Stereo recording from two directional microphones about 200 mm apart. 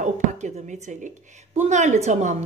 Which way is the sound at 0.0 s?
35° right (ahead or behind).